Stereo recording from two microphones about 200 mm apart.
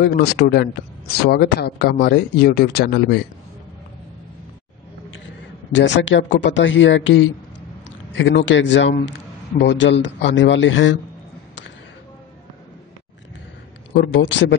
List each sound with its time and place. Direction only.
0.0 s speech: 55° left (ahead or behind)
5.7 s a man's voice: 65° left (ahead or behind)
13.9 s speech: 65° left (ahead or behind)